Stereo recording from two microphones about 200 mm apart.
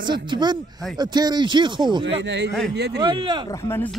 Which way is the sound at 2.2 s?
60° right (ahead or behind).